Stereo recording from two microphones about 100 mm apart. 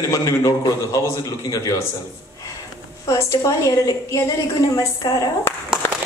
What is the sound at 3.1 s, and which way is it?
A man's voice, 35° left (ahead or behind).